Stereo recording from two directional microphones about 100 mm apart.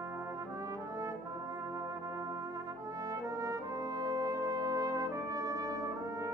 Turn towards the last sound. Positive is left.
turn(degrees=-35)  # may be behind; listen again after turning